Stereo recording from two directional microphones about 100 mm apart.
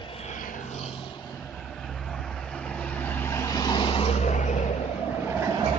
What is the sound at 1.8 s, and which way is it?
Vehicle, 5° left (ahead or behind).